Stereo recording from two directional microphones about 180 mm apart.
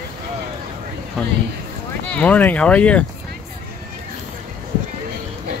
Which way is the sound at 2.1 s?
5° left (ahead or behind).